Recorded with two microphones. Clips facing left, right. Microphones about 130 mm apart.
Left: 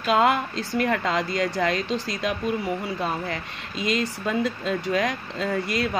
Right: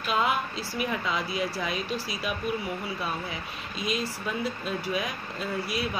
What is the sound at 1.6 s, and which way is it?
Speech, 85° left.